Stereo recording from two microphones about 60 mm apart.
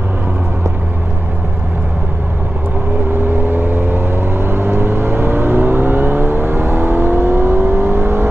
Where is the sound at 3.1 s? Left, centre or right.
Right.